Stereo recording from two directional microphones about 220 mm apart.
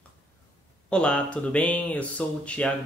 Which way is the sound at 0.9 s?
5° left (ahead or behind).